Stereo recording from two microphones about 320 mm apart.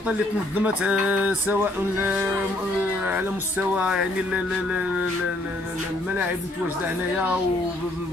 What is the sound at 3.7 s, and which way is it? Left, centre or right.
Music, centre.